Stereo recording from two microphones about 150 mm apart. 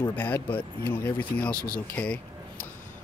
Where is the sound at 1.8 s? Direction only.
10° left (ahead or behind).